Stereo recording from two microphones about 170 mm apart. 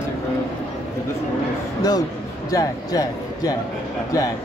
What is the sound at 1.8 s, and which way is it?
Speech, 20° left (ahead or behind).